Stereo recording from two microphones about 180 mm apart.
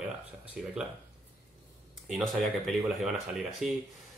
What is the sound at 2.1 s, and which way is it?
Speech, centre (ahead or behind).